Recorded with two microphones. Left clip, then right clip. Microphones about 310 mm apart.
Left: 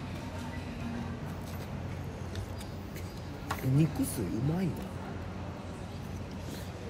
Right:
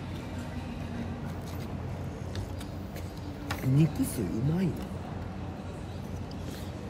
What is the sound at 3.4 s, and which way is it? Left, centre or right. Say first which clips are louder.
Speech: right 2 dB; centre.